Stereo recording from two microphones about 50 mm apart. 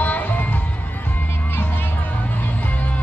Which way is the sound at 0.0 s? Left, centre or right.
Left.